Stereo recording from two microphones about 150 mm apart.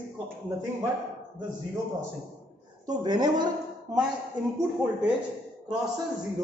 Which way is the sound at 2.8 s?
30° right (ahead or behind).